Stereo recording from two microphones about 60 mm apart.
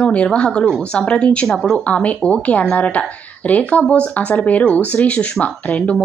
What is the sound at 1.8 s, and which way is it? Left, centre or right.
Speech, left.